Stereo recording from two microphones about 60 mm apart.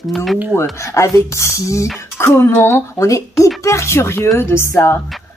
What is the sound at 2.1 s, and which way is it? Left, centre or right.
Speech, left.